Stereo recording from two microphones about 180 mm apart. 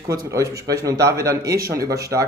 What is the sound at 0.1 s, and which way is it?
Speech, 20° right (ahead or behind).